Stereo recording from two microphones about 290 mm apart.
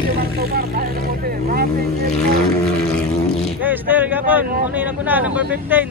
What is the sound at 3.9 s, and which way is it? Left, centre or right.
Speech, centre.